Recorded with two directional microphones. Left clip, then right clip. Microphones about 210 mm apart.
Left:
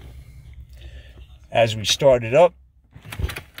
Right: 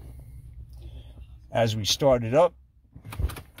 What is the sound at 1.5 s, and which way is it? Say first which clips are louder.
Speech: left 6 dB; centre (ahead or behind).